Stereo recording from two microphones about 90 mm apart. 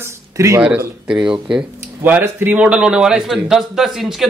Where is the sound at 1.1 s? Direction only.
10° right (ahead or behind).